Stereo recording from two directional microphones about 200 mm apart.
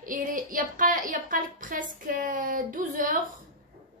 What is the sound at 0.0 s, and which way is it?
A woman's voice, 45° right (ahead or behind).